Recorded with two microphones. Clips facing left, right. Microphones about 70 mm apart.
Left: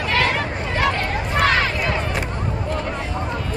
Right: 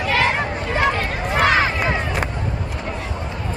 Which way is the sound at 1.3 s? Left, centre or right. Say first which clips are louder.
Right 2 dB; centre.